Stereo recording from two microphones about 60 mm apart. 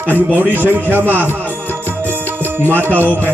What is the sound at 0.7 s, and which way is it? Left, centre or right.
Speech, right.